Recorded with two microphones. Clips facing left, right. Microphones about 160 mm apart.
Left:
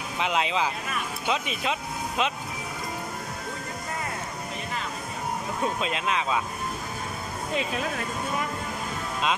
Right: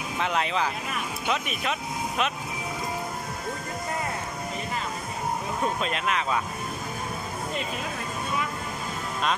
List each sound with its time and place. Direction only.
0.2 s speech: 20° left (ahead or behind)